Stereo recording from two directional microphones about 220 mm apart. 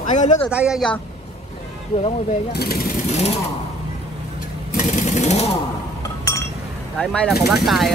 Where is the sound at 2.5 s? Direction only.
45° left (ahead or behind).